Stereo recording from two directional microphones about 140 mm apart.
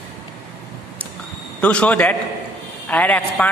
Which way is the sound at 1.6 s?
10° left (ahead or behind).